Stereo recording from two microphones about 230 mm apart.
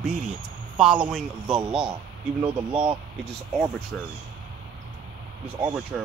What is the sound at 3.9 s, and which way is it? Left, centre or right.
Speech, centre.